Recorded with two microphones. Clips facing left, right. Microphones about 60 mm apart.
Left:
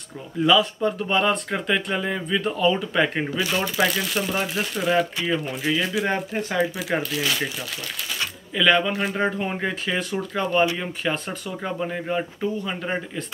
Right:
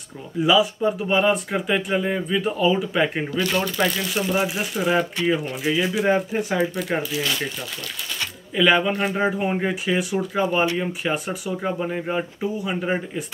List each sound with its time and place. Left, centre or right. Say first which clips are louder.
0.4 s speech: right 1 dB; centre
3.3 s speech: right 2 dB; centre
8.5 s speech: right 1 dB; centre